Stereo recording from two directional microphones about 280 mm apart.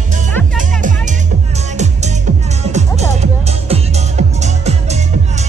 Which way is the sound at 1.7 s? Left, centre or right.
Right.